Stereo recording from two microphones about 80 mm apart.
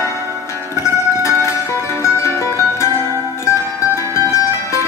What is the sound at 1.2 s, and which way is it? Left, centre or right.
Music, left.